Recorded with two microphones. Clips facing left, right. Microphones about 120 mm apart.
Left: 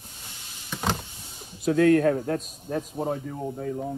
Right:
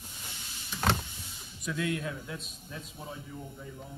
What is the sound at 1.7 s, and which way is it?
A man's voice, 50° left (ahead or behind).